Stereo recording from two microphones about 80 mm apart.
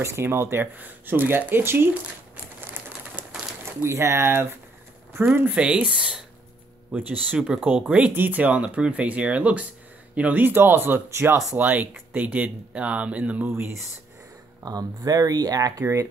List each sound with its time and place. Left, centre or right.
0.0 s speech: right
3.8 s speech: right
7.3 s speech: centre
14.6 s speech: right
15.8 s speech: right